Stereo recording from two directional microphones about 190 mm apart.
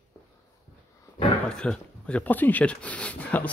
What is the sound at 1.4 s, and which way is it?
Speech, 5° left (ahead or behind).